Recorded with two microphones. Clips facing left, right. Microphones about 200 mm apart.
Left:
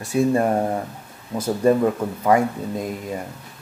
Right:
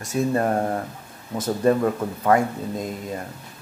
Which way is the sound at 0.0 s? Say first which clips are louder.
Left 3 dB; 15° left (ahead or behind).